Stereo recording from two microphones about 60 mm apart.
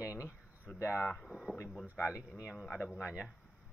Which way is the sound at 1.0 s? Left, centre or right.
Centre.